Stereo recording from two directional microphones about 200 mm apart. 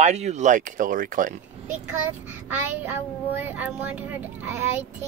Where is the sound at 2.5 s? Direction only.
10° right (ahead or behind).